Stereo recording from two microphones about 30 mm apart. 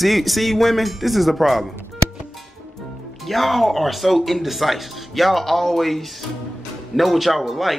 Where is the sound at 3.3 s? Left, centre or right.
Centre.